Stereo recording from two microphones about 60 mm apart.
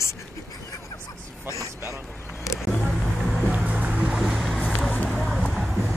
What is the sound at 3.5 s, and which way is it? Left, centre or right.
Music, centre.